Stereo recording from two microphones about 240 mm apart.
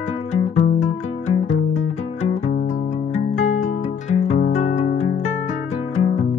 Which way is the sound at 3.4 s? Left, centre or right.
Left.